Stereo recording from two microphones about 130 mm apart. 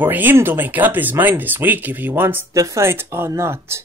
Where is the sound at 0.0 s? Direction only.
15° right (ahead or behind).